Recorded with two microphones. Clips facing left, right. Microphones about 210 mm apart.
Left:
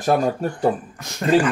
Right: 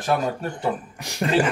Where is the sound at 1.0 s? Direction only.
15° right (ahead or behind).